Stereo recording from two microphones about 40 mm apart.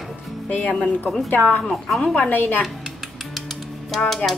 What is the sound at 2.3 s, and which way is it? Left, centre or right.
Speech, left.